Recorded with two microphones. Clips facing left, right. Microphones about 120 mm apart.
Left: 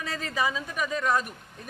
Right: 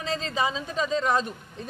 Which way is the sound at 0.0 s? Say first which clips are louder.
Right 2 dB; 25° right (ahead or behind).